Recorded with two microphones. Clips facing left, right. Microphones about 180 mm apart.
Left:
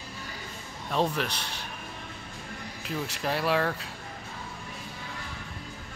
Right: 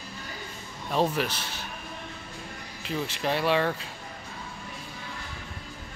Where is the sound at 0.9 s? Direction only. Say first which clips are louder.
Right 2 dB; 5° right (ahead or behind).